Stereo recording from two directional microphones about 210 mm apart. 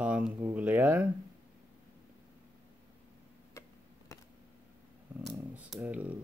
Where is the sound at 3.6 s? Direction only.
15° left (ahead or behind).